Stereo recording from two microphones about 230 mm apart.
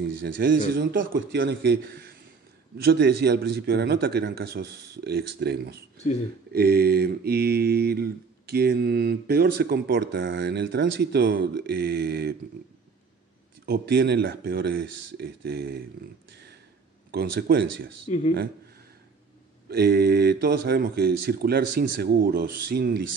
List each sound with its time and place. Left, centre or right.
0.2 s mantra: right
13.7 s mantra: right
15.1 s speech: right
17.1 s mantra: right
18.0 s speech: left
19.7 s mantra: right